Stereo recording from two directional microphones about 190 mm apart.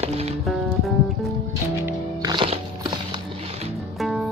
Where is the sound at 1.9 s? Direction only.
20° right (ahead or behind).